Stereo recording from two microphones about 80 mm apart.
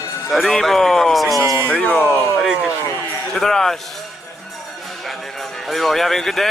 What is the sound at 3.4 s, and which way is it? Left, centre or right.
Speech, centre.